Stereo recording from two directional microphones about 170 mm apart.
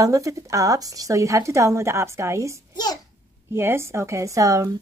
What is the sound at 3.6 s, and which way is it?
A woman's voice, 15° right (ahead or behind).